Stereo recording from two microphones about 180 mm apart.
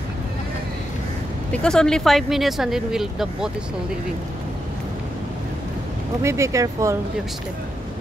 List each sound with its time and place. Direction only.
1.5 s speech: 5° left (ahead or behind)
6.2 s speech: 15° right (ahead or behind)